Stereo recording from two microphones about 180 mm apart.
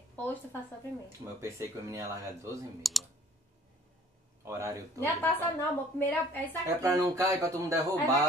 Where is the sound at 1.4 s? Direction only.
15° right (ahead or behind).